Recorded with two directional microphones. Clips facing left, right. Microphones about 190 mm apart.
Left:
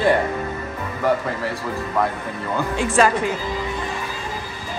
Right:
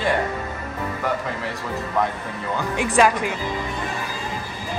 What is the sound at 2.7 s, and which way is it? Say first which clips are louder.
Speech: even; 15° right (ahead or behind).